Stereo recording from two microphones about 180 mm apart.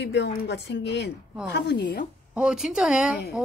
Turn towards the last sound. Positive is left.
turn(degrees=-5)  # may be behind; listen again after turning